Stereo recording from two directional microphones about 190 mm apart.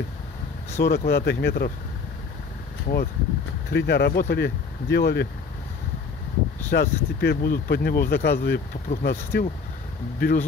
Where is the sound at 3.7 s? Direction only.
60° left (ahead or behind).